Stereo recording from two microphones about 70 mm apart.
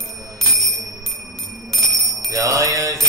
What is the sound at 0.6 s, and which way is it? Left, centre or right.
Bell, centre.